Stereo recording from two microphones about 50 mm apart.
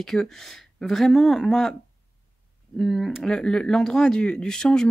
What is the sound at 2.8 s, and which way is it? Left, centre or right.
Speech, centre.